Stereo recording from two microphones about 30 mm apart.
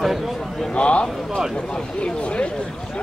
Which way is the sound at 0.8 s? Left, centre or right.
Left.